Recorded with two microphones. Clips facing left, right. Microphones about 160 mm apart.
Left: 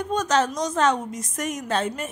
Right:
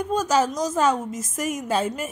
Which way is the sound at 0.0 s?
5° right (ahead or behind).